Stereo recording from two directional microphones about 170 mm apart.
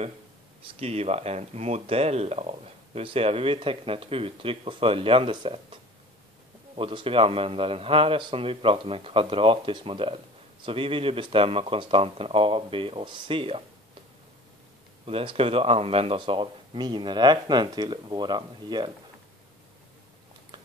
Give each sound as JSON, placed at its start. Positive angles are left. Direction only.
{"t": 0.7, "sound": "speech", "side_deg": -35}
{"t": 6.8, "sound": "speech", "side_deg": -30}
{"t": 15.0, "sound": "speech", "side_deg": -35}